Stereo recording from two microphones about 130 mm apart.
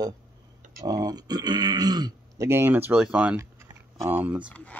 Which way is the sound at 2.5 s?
20° right (ahead or behind).